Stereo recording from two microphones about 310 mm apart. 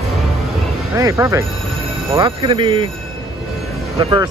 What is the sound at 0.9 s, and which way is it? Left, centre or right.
Speech, centre.